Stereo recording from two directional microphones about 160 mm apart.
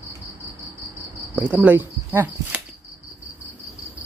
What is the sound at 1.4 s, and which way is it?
Speech, 10° right (ahead or behind).